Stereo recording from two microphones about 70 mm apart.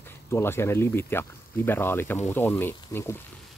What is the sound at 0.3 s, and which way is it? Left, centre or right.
Speech, left.